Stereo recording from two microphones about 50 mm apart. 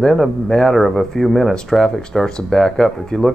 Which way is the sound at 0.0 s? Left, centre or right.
Centre.